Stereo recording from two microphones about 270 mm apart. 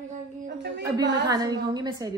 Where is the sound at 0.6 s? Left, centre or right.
Right.